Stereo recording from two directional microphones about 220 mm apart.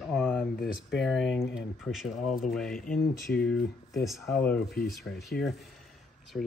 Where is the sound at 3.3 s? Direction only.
5° left (ahead or behind).